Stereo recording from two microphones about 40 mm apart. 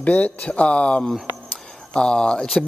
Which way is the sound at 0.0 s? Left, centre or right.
Left.